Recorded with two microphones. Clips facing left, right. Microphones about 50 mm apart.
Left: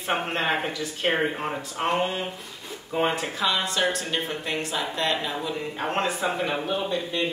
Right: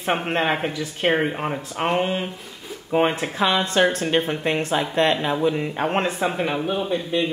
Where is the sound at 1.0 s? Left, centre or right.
Centre.